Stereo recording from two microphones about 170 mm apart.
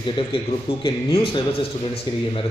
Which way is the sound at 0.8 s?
30° left (ahead or behind).